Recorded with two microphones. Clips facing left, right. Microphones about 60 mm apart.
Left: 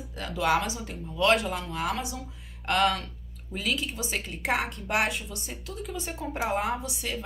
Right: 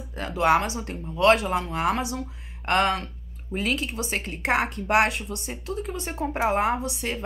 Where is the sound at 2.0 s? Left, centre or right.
Right.